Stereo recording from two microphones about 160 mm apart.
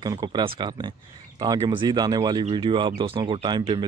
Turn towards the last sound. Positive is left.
turn(degrees=-30)  # may be behind; listen again after turning